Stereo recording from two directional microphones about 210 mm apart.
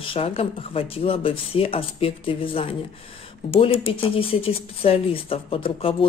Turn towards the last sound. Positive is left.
turn(degrees=25)  # may be behind; listen again after turning